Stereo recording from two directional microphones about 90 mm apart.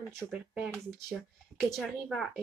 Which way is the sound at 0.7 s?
Centre (ahead or behind).